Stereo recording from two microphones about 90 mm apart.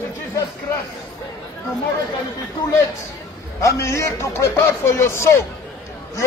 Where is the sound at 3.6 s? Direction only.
35° left (ahead or behind).